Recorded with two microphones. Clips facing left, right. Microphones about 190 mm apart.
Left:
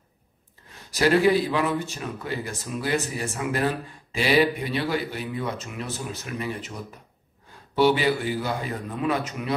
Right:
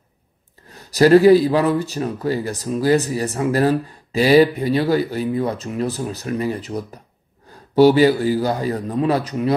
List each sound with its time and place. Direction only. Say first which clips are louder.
0.8 s speech: right 9 dB; 40° right (ahead or behind)